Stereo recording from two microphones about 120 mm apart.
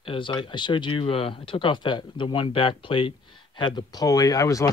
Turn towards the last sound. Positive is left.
turn(degrees=30)  # may be behind; listen again after turning